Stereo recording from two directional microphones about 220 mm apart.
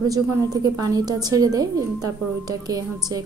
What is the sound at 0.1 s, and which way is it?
Speech, 15° right (ahead or behind).